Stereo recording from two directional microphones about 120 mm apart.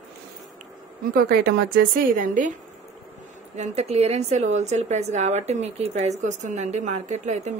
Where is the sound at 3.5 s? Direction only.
70° right (ahead or behind).